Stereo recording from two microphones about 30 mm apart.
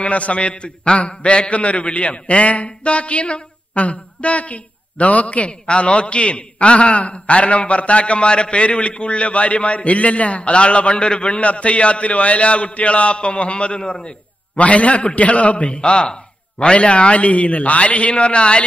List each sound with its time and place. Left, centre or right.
0.0 s a man's voice: left
1.5 s a man's voice: left
5.7 s a man's voice: left
14.6 s a man's voice: left
15.9 s a man's voice: left